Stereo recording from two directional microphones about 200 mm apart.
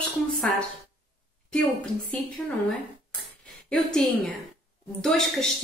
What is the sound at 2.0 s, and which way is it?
Speech, 5° left (ahead or behind).